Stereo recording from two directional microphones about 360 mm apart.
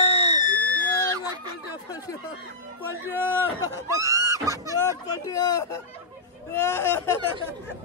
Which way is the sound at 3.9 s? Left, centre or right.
Centre.